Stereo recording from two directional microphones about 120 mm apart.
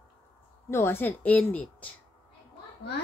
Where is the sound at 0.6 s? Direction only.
20° left (ahead or behind).